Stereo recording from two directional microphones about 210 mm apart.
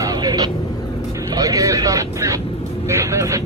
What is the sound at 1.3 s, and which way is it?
Speech, 15° right (ahead or behind).